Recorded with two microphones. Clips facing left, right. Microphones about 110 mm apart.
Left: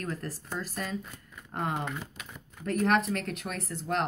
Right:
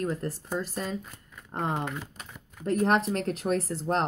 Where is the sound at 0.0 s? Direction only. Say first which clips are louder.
Right 5 dB; 25° right (ahead or behind).